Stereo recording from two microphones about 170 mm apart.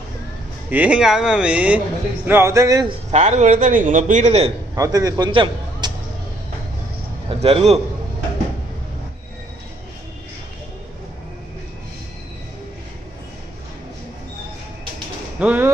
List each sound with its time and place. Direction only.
0.7 s speech: 10° right (ahead or behind)
3.1 s a man's voice: 45° right (ahead or behind)
4.7 s a man's voice: 20° right (ahead or behind)
7.2 s a man's voice: 35° right (ahead or behind)
15.3 s speech: 10° right (ahead or behind)